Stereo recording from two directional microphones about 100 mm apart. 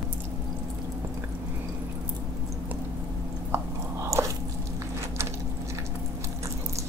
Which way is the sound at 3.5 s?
30° right (ahead or behind).